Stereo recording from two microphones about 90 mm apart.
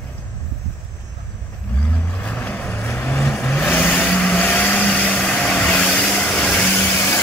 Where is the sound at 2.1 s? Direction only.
20° left (ahead or behind).